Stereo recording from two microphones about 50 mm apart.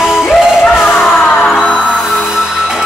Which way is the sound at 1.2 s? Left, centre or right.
Left.